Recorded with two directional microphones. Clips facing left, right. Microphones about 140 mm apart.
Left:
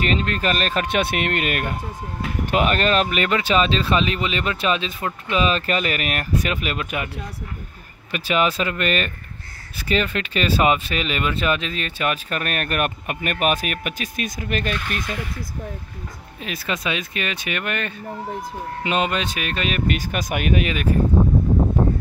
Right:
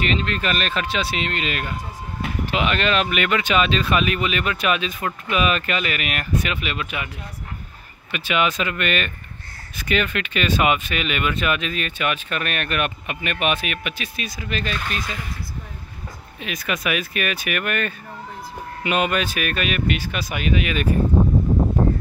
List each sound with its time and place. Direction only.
0.0 s speech: 40° left (ahead or behind)
0.8 s speech: 55° left (ahead or behind)
8.1 s speech: 35° left (ahead or behind)
16.4 s speech: 30° left (ahead or behind); by 20.6 s 50° left (ahead or behind)